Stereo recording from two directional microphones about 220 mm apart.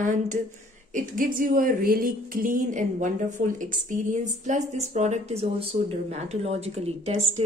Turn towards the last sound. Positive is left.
turn(degrees=-30)  # may be behind; listen again after turning